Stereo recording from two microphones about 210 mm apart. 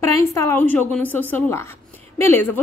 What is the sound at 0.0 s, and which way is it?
A woman's voice, 15° left (ahead or behind).